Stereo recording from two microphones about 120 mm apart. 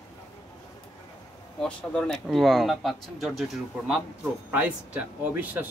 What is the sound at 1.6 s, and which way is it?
Speech, 5° left (ahead or behind).